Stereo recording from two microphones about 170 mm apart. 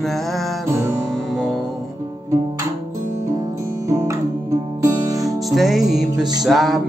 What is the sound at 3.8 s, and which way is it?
Music, 20° right (ahead or behind).